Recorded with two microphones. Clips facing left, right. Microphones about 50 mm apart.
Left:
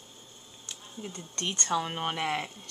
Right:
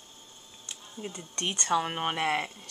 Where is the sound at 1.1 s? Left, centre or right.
Centre.